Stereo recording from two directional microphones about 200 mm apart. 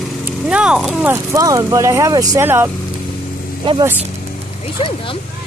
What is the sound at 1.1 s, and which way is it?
Speech, 15° right (ahead or behind).